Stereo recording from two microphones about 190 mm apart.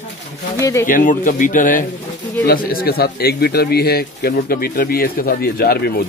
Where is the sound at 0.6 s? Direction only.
15° left (ahead or behind).